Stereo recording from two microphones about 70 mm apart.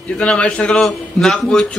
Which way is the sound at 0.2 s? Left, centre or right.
Centre.